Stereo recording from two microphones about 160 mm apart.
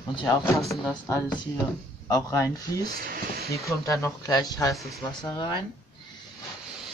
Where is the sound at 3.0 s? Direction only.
65° right (ahead or behind).